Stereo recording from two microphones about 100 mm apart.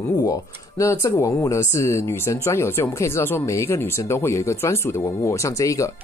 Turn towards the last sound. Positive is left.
turn(degrees=30)  # may be behind; listen again after turning